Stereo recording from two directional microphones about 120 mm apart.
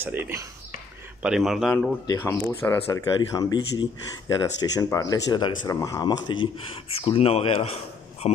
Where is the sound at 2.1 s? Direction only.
20° left (ahead or behind).